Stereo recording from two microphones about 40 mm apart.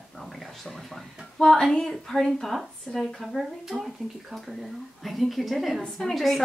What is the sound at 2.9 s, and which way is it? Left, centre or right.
Speech, centre.